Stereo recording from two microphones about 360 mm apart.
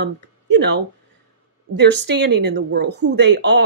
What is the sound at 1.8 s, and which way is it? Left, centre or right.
Speech, right.